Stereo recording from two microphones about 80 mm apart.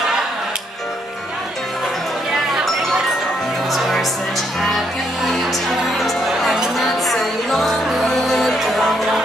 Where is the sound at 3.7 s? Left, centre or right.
Centre.